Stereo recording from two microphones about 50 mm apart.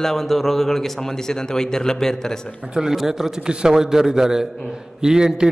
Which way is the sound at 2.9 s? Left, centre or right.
Centre.